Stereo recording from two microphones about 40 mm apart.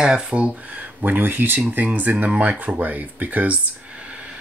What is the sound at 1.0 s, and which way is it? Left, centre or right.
Speech, right.